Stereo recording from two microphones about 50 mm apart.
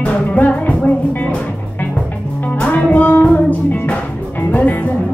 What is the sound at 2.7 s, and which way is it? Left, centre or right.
Music, left.